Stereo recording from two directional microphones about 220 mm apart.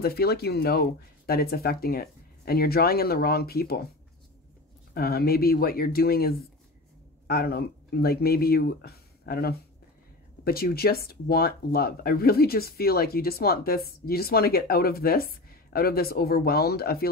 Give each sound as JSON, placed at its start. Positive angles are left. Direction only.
{"t": 0.0, "sound": "speech", "side_deg": 45}
{"t": 4.9, "sound": "speech", "side_deg": 45}